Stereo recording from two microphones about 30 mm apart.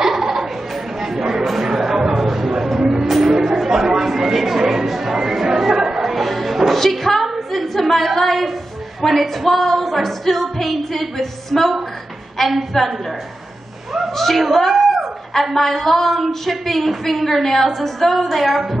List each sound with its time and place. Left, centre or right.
0.0 s laughter: centre
1.0 s a sound: centre
2.8 s music: centre
3.1 s a sound: centre
5.9 s music: centre
14.1 s a woman's voice: centre
14.4 s music: centre